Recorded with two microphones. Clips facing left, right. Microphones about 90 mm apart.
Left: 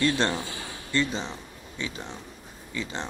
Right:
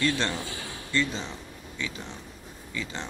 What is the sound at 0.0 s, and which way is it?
Speech, 25° left (ahead or behind).